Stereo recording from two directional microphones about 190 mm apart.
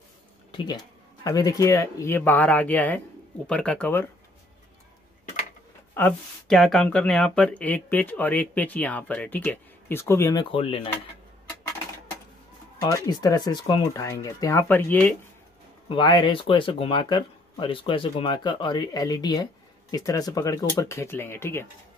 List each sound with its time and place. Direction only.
0.5 s speech: 20° left (ahead or behind)
5.9 s speech: 5° left (ahead or behind)
10.5 s speech: 30° left (ahead or behind)
12.8 s speech: 20° left (ahead or behind)
15.9 s speech: 25° left (ahead or behind)